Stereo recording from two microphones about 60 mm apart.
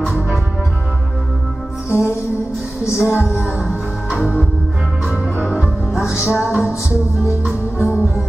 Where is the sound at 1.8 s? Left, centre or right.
Left.